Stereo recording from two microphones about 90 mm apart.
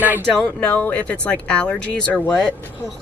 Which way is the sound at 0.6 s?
15° left (ahead or behind).